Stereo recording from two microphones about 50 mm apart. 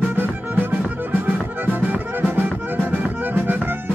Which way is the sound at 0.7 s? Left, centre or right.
Right.